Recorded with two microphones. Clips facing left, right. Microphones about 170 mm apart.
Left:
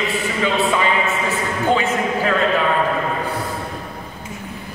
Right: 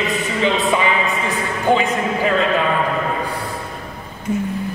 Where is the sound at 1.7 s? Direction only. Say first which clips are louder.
Right 2 dB; 15° right (ahead or behind).